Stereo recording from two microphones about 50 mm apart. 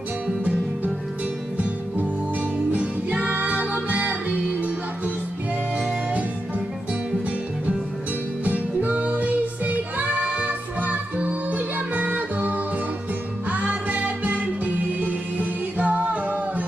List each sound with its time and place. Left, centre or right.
2.7 s music: right
8.5 s music: right